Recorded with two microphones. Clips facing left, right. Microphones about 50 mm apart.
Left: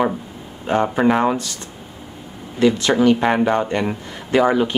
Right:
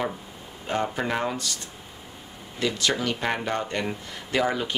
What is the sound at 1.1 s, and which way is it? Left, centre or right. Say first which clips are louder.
Speech: left 9 dB; left.